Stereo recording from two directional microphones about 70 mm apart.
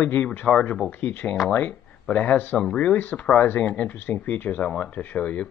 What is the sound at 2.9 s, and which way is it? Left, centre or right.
Speech, left.